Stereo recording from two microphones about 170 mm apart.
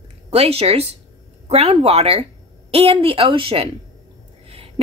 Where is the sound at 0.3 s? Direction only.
35° right (ahead or behind).